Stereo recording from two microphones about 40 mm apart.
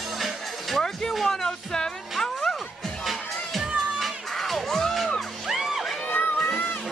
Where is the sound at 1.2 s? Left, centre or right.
Centre.